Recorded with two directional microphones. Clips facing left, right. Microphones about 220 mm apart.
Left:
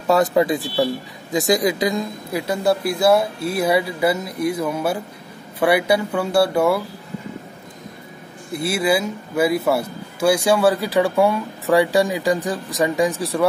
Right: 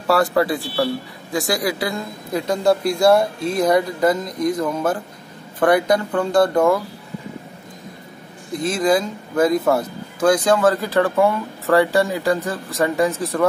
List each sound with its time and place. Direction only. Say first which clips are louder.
0.0 s speech: left 1 dB; 20° left (ahead or behind)
8.5 s speech: right 1 dB; 10° left (ahead or behind)